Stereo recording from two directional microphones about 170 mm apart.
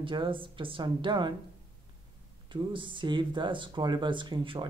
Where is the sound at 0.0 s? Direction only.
30° right (ahead or behind).